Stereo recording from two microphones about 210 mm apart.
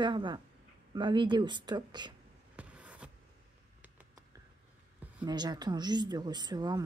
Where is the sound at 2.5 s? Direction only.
5° right (ahead or behind).